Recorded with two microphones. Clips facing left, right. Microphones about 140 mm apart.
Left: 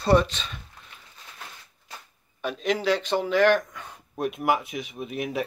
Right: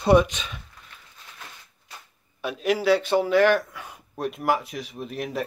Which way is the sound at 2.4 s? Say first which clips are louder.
Right 2 dB; 5° right (ahead or behind).